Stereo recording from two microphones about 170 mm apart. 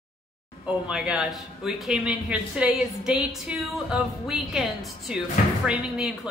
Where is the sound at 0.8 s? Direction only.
5° right (ahead or behind).